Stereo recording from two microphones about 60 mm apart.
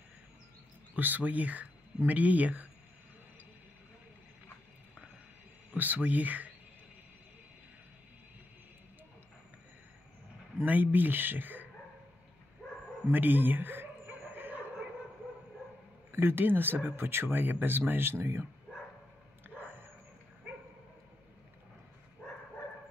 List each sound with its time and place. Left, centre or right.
0.9 s speech: right
5.7 s speech: right
10.6 s speech: right
13.1 s a man's voice: right
14.2 s a sound: right
16.1 s speech: right
19.4 s a sound: right